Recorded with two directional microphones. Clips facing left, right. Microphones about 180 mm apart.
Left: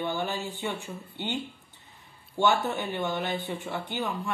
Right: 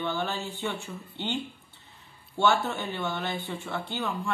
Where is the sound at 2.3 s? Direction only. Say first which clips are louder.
Even; 15° left (ahead or behind).